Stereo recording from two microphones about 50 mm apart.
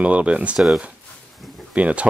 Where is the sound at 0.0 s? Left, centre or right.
Right.